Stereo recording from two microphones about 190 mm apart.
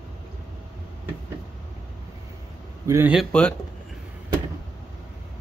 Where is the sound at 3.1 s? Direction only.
Centre (ahead or behind).